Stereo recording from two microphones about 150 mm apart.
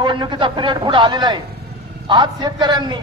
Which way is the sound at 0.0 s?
30° right (ahead or behind).